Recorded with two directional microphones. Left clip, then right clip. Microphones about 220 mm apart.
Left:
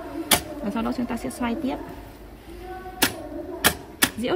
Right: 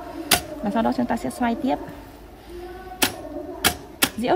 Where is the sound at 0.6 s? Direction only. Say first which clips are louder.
Right 5 dB; 45° right (ahead or behind).